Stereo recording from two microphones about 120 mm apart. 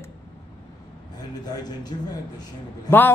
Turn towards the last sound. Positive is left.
turn(degrees=15)  # may be behind; listen again after turning